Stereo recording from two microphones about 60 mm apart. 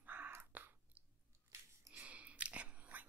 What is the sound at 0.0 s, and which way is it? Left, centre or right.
Chewing, right.